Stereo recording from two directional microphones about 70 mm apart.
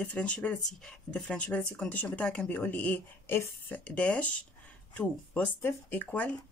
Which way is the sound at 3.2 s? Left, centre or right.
Left.